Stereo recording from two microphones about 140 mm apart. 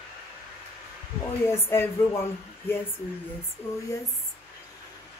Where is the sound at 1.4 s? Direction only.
15° left (ahead or behind).